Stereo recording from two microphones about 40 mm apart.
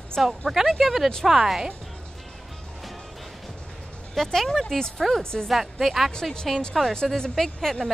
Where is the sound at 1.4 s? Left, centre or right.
Centre.